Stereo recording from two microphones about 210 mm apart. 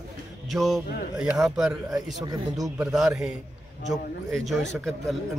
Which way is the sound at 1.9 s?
15° right (ahead or behind).